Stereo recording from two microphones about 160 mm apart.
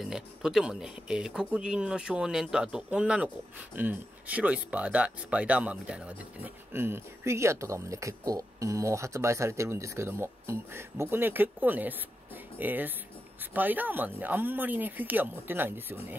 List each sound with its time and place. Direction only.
0.0 s speech: 5° right (ahead or behind)